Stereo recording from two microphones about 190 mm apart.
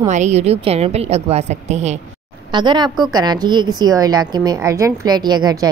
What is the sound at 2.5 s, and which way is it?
A woman's voice, 25° right (ahead or behind).